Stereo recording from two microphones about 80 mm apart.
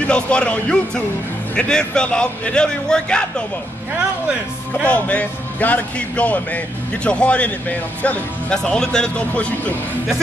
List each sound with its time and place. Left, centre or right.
0.0 s a man's voice: centre
4.8 s a man's voice: centre